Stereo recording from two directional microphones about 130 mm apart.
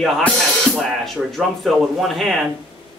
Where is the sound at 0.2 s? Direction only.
5° left (ahead or behind).